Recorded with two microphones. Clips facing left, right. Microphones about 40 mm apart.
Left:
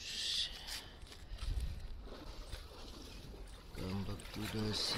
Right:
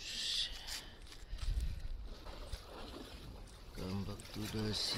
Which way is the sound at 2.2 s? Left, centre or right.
Centre.